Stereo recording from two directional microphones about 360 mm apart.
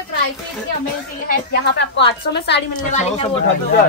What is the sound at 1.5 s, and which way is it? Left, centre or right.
A woman's voice, left.